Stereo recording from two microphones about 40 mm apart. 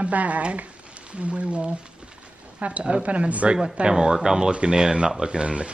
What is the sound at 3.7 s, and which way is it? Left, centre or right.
Speech, right.